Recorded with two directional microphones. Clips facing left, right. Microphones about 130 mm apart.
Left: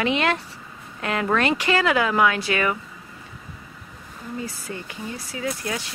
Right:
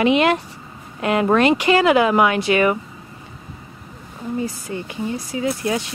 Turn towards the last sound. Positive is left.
turn(degrees=-25)  # may be behind; listen again after turning